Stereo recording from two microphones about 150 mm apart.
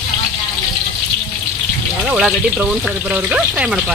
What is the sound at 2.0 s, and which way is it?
Speech, 10° right (ahead or behind).